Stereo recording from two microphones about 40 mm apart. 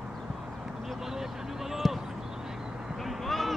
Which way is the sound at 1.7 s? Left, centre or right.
Centre.